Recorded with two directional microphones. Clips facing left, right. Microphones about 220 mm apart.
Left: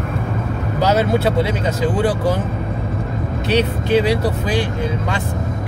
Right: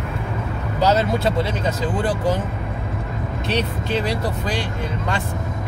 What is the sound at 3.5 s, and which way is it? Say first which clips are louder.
Speech: left 7 dB; 65° left (ahead or behind).